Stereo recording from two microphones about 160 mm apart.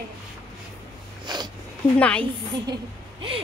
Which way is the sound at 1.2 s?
25° right (ahead or behind).